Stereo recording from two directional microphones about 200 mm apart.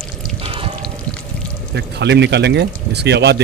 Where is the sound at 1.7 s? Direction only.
60° right (ahead or behind).